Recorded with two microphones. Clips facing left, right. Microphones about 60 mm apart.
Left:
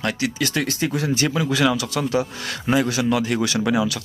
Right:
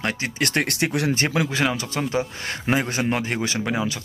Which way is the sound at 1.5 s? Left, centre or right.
Right.